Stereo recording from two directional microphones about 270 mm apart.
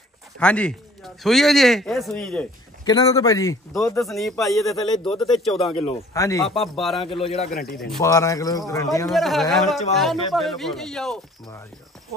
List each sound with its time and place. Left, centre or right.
0.4 s speech: centre
2.8 s speech: centre
5.6 s a man's voice: left
6.1 s speech: centre
6.4 s speech: centre
7.0 s a man's voice: centre
7.9 s speech: centre
9.1 s speech: centre